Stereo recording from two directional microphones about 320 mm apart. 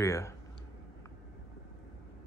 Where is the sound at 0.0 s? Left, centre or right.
Centre.